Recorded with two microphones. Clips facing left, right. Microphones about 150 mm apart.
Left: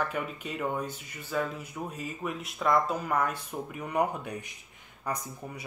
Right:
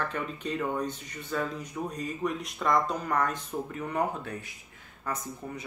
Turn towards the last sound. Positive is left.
turn(degrees=15)  # may be behind; listen again after turning